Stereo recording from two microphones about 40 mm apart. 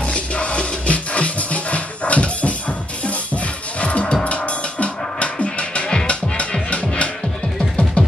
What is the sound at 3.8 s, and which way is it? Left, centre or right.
Music, left.